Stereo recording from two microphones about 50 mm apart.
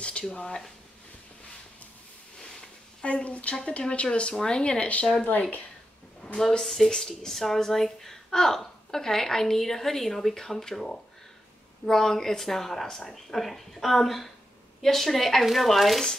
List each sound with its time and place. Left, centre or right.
0.0 s speech: centre
3.0 s speech: left
6.2 s a woman's voice: centre
6.6 s a woman's voice: centre